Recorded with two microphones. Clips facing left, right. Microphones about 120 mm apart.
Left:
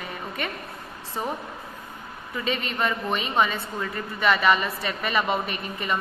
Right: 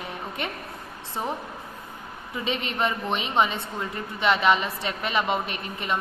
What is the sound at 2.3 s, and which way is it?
A woman's voice, 5° right (ahead or behind).